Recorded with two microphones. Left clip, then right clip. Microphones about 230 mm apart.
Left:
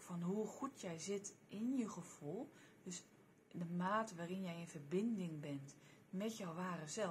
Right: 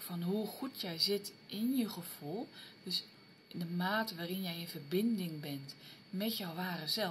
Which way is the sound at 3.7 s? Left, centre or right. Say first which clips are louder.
Right 5 dB; centre.